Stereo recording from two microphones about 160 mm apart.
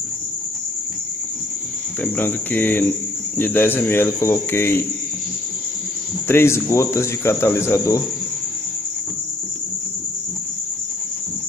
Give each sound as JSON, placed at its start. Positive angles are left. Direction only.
{"t": 2.0, "sound": "speech", "side_deg": 10}
{"t": 6.2, "sound": "speech", "side_deg": 15}